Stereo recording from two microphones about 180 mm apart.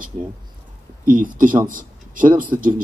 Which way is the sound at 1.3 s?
50° right (ahead or behind).